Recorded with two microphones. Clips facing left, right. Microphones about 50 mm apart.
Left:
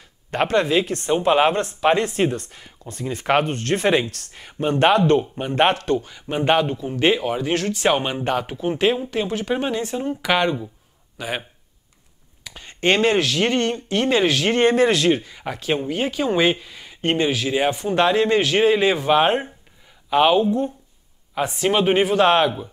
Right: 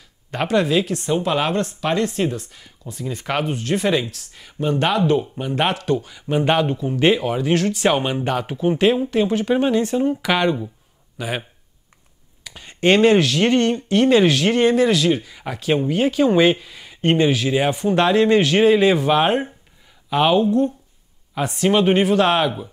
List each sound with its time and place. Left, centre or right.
0.3 s speech: centre
3.0 s speech: centre
3.4 s speech: centre
3.7 s speech: centre
4.6 s speech: centre
4.9 s speech: centre
12.4 s speech: centre